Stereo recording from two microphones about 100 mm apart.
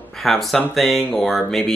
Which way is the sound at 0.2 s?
Centre (ahead or behind).